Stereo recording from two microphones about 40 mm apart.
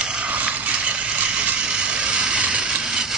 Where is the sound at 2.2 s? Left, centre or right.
Right.